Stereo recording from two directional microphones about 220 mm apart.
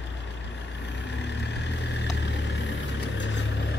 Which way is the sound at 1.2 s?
50° left (ahead or behind).